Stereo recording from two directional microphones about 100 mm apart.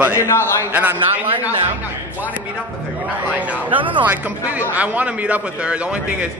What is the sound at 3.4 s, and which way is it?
A man's voice, 15° right (ahead or behind).